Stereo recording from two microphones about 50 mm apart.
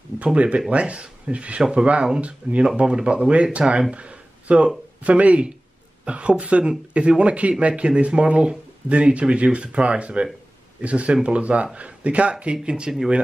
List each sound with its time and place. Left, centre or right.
0.2 s speech: right
2.6 s speech: centre
3.9 s a sound: right
5.0 s speech: right